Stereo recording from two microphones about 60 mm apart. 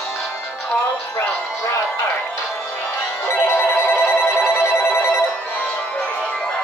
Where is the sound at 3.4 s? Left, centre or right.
Left.